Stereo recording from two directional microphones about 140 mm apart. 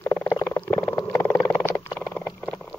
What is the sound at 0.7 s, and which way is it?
Wild animals, 25° left (ahead or behind).